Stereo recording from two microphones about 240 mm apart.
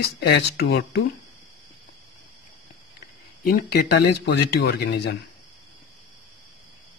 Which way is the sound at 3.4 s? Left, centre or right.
Left.